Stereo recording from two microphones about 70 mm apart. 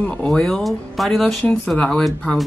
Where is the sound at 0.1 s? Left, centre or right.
Centre.